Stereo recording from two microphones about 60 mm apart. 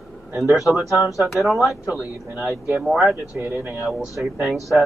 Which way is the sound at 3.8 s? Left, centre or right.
Centre.